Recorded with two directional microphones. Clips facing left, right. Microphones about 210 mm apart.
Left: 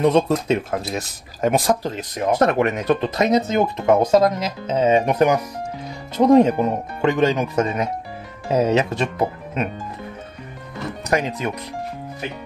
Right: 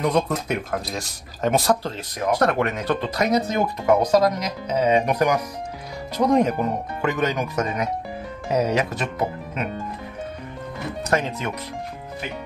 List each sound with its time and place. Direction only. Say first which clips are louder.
0.0 s speech: left 5 dB; 25° left (ahead or behind)
0.9 s speech: left 4 dB; 15° left (ahead or behind)
11.1 s speech: left 2 dB; 15° left (ahead or behind)